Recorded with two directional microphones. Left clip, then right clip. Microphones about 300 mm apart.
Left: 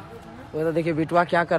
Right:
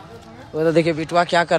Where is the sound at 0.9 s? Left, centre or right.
Centre.